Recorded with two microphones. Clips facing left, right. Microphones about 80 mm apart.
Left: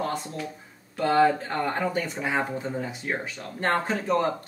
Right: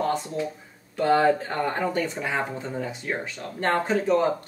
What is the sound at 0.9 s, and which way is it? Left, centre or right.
Speech, centre.